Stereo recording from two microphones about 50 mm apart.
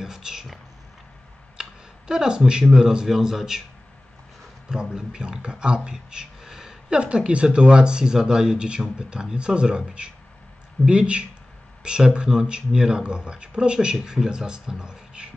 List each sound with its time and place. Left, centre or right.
0.0 s speech: centre
1.6 s a sound: centre
2.7 s speech: centre
4.6 s speech: centre